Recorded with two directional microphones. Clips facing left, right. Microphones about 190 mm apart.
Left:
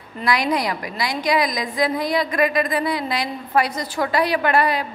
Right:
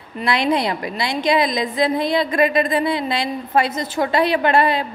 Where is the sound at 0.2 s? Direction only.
25° right (ahead or behind).